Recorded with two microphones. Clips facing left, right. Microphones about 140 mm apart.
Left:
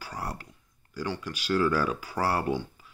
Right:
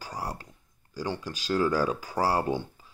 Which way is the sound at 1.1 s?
40° right (ahead or behind).